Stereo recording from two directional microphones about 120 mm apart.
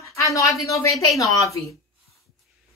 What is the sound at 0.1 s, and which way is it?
A woman's voice, 25° left (ahead or behind).